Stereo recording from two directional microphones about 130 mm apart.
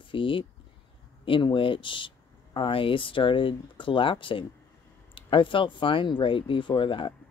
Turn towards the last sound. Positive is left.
turn(degrees=40)  # may be behind; listen again after turning